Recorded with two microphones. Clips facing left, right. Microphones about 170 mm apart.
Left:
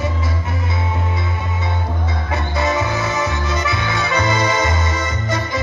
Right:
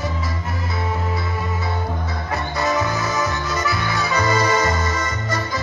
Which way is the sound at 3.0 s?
Centre (ahead or behind).